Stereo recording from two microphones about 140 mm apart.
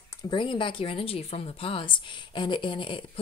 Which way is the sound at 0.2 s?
35° left (ahead or behind).